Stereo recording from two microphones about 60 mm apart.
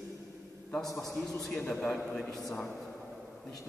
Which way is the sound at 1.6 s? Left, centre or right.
Centre.